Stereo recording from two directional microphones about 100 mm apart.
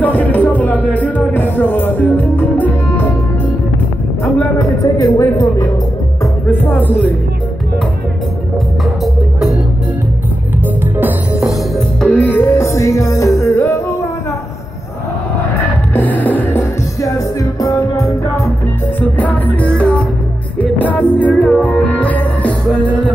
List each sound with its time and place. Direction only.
0.0 s music: 15° left (ahead or behind)
4.2 s music: 30° left (ahead or behind)
6.5 s music: 20° left (ahead or behind)
12.0 s music: 15° left (ahead or behind)
15.9 s music: 15° left (ahead or behind)
17.6 s music: 35° left (ahead or behind)
18.9 s music: 15° left (ahead or behind)